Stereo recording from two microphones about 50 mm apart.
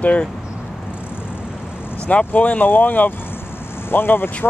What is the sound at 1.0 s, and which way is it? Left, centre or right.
Vehicle, left.